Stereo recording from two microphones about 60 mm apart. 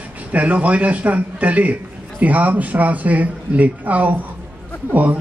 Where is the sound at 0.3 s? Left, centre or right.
Right.